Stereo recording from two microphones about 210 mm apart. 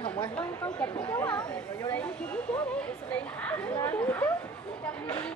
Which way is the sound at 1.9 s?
5° left (ahead or behind).